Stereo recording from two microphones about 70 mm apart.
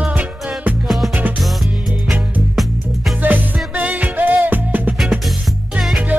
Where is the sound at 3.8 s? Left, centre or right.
Right.